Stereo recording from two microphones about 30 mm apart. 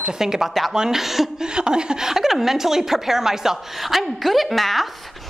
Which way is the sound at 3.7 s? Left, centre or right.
Centre.